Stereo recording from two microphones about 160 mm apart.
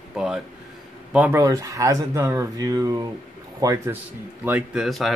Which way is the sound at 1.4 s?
20° right (ahead or behind).